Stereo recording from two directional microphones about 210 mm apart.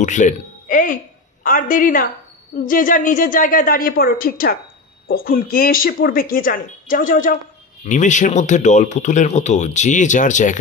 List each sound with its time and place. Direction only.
0.0 s speech: 35° left (ahead or behind)